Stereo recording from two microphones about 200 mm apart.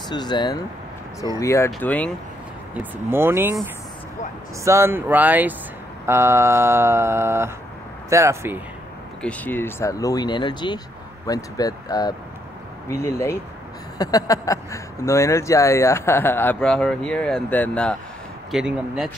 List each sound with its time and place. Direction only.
0.1 s speech: 20° left (ahead or behind)
2.7 s speech: 10° right (ahead or behind)
4.6 s speech: 10° right (ahead or behind)
9.2 s speech: 5° left (ahead or behind)